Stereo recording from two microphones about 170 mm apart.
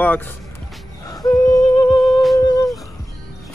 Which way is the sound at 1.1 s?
20° left (ahead or behind).